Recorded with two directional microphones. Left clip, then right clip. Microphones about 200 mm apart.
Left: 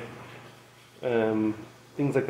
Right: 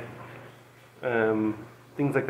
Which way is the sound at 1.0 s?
15° left (ahead or behind).